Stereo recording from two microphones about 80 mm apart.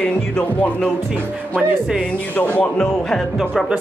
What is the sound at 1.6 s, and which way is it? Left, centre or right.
Speech, centre.